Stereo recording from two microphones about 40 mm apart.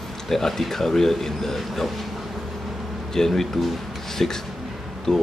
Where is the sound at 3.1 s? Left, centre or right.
Centre.